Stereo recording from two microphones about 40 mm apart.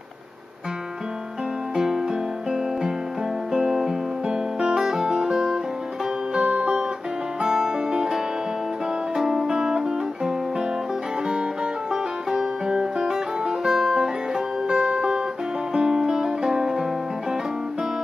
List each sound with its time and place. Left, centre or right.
1.8 s music: centre
6.3 s music: right